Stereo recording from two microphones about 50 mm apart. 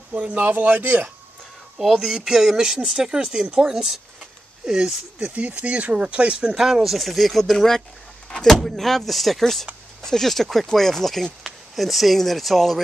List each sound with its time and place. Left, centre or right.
0.1 s speech: right
1.8 s speech: centre
3.7 s speech: centre
5.3 s speech: right
6.5 s speech: centre